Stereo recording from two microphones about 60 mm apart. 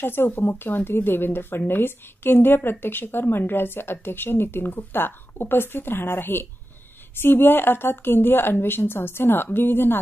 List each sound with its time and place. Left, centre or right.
0.0 s a woman's voice: left